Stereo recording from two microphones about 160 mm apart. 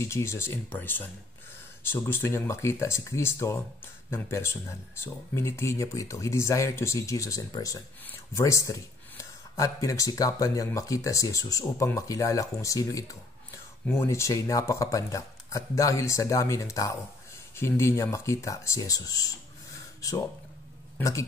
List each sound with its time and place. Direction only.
0.0 s speech: 15° left (ahead or behind)